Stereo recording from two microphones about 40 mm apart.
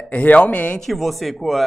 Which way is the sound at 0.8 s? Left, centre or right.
Centre.